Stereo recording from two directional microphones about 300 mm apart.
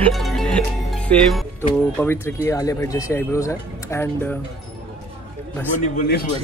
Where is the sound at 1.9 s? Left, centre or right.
Centre.